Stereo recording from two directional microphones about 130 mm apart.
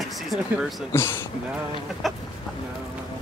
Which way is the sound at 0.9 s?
20° left (ahead or behind).